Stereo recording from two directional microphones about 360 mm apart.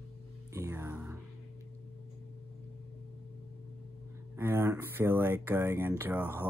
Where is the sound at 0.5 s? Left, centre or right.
Centre.